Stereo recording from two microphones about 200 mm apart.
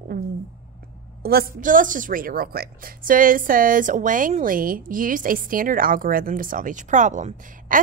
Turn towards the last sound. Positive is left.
turn(degrees=-40)  # may be behind; listen again after turning